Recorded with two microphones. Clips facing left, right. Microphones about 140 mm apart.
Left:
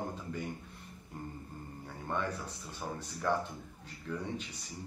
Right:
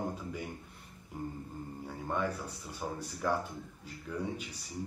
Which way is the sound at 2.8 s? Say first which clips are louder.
Even; 5° right (ahead or behind).